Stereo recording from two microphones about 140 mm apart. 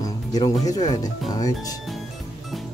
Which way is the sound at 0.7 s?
30° left (ahead or behind).